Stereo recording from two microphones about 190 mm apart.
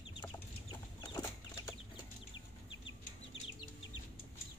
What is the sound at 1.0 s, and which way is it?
Chicken, 20° left (ahead or behind).